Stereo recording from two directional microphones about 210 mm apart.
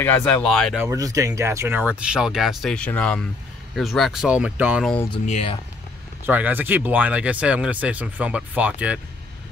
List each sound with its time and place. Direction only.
0.0 s speech: 10° left (ahead or behind)
0.8 s speech: 15° right (ahead or behind)
5.1 s speech: 30° left (ahead or behind)
6.2 s speech: 10° right (ahead or behind)